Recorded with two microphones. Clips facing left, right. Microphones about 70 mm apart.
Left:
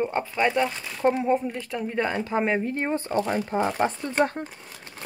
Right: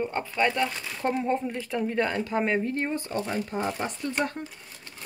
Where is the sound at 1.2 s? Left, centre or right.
Centre.